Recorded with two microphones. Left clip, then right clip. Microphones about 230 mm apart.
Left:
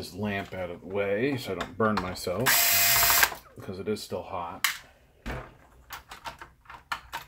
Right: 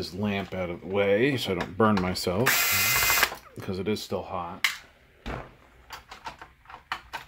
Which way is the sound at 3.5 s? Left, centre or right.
Right.